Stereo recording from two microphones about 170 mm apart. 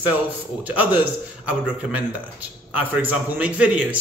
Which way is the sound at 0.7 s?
10° right (ahead or behind).